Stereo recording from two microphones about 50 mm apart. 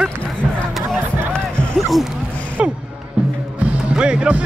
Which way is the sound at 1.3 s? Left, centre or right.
Centre.